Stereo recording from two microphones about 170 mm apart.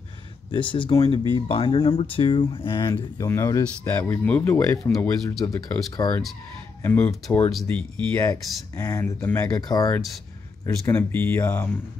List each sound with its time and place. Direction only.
0.5 s speech: 30° left (ahead or behind); by 8.3 s 10° left (ahead or behind)
8.3 s speech: 20° left (ahead or behind)
10.9 s speech: 10° left (ahead or behind)